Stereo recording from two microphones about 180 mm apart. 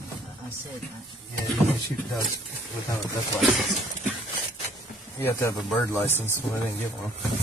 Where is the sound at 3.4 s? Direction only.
Centre (ahead or behind).